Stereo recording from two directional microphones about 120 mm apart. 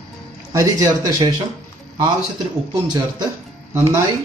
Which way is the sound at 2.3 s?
35° right (ahead or behind).